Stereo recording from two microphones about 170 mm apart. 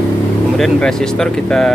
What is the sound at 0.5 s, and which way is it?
Speech, centre (ahead or behind).